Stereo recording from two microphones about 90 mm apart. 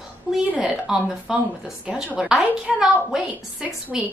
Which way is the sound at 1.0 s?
10° right (ahead or behind).